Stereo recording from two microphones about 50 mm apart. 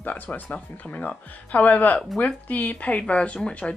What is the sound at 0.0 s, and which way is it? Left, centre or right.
Speech, left.